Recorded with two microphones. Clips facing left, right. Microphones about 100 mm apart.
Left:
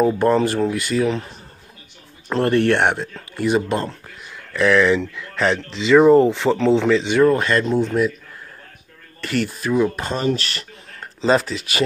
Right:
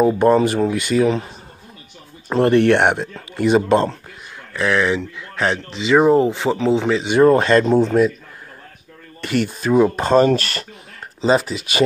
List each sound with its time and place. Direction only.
0.0 s speech: 15° right (ahead or behind)
2.2 s speech: 15° right (ahead or behind)
4.6 s speech: 5° right (ahead or behind)
7.2 s speech: 25° right (ahead or behind)
9.2 s speech: 20° right (ahead or behind); by 10.7 s 45° right (ahead or behind)
11.1 s speech: 10° right (ahead or behind)